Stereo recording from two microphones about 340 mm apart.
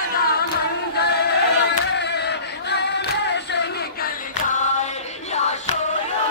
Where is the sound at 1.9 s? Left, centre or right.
Left.